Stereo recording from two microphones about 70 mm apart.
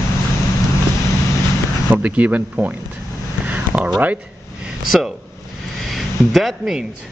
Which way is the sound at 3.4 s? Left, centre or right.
Right.